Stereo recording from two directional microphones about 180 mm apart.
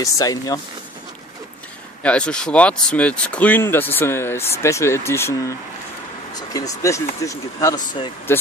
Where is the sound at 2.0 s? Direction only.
5° left (ahead or behind).